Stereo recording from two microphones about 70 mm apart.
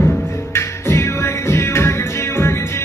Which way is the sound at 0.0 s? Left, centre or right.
Left.